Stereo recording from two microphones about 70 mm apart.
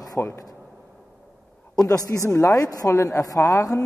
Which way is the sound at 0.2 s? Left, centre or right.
Left.